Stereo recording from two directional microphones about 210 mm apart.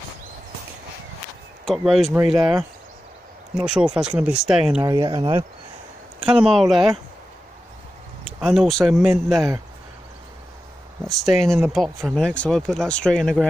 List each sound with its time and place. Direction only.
1.7 s speech: centre (ahead or behind)
3.5 s speech: 5° right (ahead or behind)
4.8 s speech: 20° right (ahead or behind)
6.1 s speech: 5° right (ahead or behind)
8.4 s speech: centre (ahead or behind)
11.1 s speech: centre (ahead or behind)